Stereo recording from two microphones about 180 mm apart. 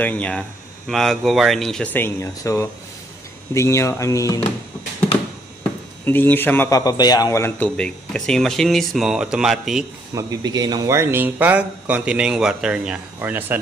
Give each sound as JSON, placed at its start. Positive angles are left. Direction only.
{"t": 0.0, "sound": "a man's voice", "side_deg": 10}
{"t": 6.0, "sound": "a man's voice", "side_deg": 10}
{"t": 10.1, "sound": "speech", "side_deg": -20}